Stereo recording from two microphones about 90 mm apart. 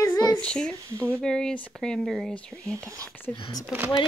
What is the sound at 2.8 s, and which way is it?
Speech, 40° right (ahead or behind).